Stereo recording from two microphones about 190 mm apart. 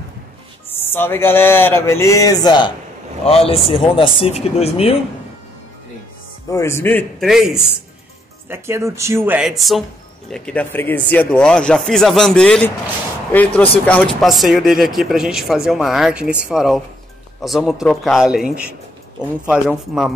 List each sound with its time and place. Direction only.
0.7 s speech: 10° left (ahead or behind)
3.3 s speech: 30° left (ahead or behind)
6.5 s speech: 15° left (ahead or behind)
7.2 s speech: centre (ahead or behind)
8.5 s speech: 15° right (ahead or behind); by 12.7 s 5° left (ahead or behind)
13.8 s speech: 5° left (ahead or behind)